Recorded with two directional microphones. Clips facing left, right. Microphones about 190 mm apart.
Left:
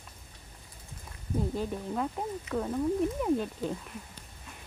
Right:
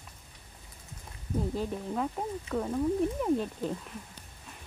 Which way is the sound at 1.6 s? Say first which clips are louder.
Even; centre (ahead or behind).